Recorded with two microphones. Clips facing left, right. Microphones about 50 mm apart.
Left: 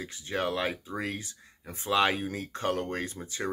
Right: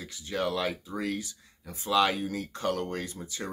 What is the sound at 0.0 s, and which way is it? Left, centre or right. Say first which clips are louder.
Speech: even; left.